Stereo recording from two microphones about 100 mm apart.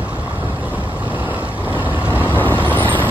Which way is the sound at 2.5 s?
20° left (ahead or behind).